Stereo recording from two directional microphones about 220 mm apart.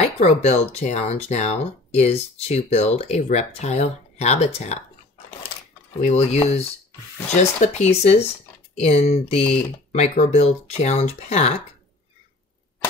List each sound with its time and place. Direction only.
0.0 s speech: 30° left (ahead or behind)
5.9 s speech: 30° left (ahead or behind)
7.6 s speech: 30° left (ahead or behind)